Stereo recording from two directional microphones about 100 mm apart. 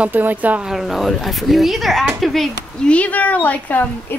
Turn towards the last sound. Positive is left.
turn(degrees=15)  # may be behind; listen again after turning